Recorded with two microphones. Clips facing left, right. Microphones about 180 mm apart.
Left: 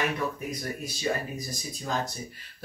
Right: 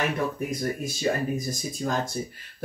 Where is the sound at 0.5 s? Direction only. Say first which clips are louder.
Right 5 dB; 50° right (ahead or behind).